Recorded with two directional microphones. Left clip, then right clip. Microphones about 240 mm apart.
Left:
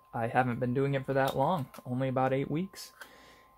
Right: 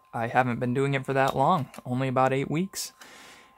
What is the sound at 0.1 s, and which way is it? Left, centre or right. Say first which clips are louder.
Speech: right 4 dB; centre.